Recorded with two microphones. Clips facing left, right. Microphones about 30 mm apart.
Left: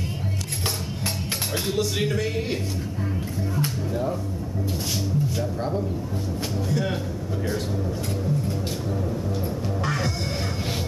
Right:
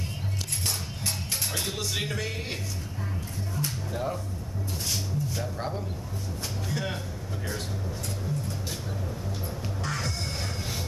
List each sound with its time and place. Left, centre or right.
1.7 s speech: centre
3.9 s speech: centre
5.4 s speech: centre
9.8 s music: centre